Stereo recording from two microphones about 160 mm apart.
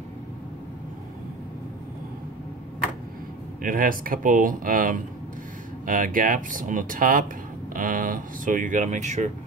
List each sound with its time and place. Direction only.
3.6 s speech: 60° right (ahead or behind)